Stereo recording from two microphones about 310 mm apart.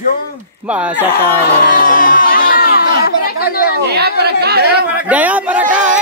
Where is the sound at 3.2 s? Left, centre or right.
Left.